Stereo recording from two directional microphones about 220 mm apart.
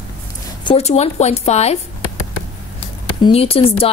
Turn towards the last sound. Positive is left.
turn(degrees=25)  # may be behind; listen again after turning